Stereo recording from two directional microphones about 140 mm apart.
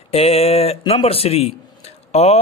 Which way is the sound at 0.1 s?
45° left (ahead or behind).